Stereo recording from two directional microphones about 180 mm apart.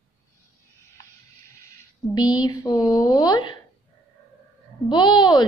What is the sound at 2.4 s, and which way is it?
A woman's voice, 20° left (ahead or behind).